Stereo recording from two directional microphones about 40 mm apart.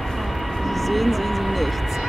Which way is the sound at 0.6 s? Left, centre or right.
Centre.